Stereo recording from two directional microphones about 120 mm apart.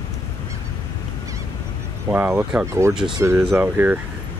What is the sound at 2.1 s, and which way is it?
Speech, 15° right (ahead or behind).